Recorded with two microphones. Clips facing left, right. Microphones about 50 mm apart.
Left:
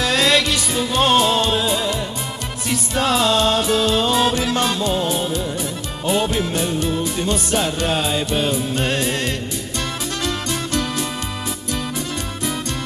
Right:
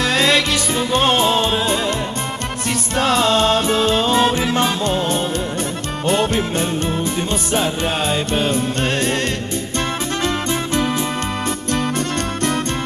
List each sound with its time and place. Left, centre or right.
0.0 s music: centre
3.0 s music: centre
3.8 s music: centre
10.2 s music: right
12.0 s music: right